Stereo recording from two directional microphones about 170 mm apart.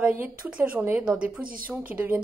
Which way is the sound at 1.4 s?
60° right (ahead or behind).